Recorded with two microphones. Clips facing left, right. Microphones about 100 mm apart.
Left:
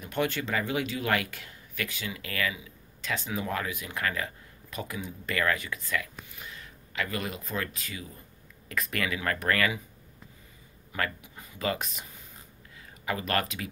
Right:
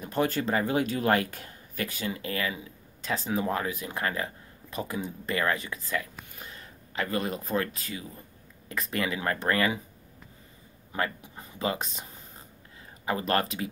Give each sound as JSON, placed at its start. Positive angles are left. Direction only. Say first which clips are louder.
{"t": 0.0, "sound": "speech", "louder": "right 3 dB", "side_deg": -35}
{"t": 10.9, "sound": "speech", "louder": "right 2 dB", "side_deg": -30}